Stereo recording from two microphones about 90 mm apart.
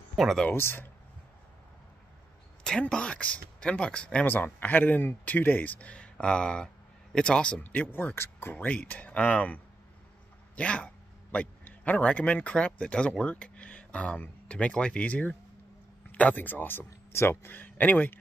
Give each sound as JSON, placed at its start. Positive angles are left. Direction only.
{"t": 0.1, "sound": "speech", "side_deg": 0}
{"t": 0.5, "sound": "speech", "side_deg": 25}
{"t": 2.6, "sound": "speech", "side_deg": 5}
{"t": 7.6, "sound": "speech", "side_deg": 20}
{"t": 8.5, "sound": "speech", "side_deg": 15}